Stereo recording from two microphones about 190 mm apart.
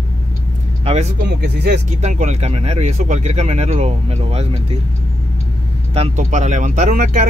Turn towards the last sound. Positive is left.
turn(degrees=-40)  # may be behind; listen again after turning